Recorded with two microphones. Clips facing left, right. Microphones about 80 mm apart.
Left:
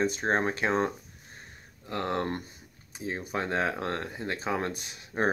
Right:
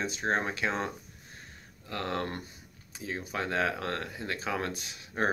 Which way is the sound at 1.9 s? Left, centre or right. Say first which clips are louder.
Left 3 dB; left.